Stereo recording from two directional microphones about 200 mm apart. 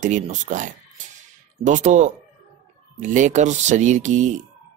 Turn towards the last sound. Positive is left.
turn(degrees=-35)  # may be behind; listen again after turning